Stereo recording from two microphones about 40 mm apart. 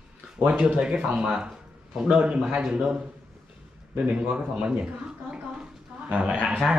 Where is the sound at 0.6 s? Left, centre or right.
Right.